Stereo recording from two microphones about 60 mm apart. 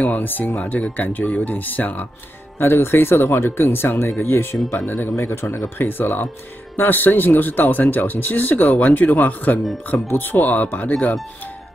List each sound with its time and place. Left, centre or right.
0.0 s speech: left
2.6 s speech: left